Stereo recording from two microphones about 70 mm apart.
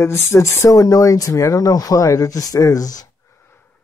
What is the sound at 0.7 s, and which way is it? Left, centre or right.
Speech, left.